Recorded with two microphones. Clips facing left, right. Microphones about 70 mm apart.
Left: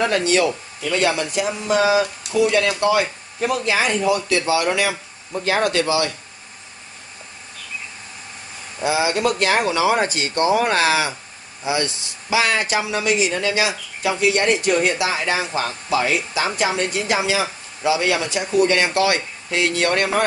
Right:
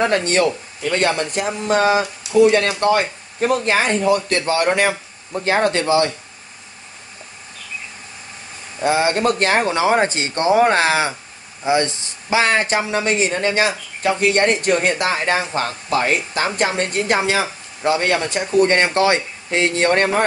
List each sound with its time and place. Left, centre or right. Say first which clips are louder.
0.2 s speech: right 1 dB; right
8.8 s speech: right 2 dB; right